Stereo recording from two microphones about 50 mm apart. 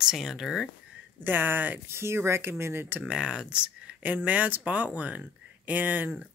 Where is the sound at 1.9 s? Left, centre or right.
Right.